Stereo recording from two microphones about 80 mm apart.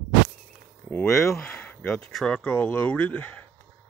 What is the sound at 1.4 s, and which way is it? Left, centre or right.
Speech, centre.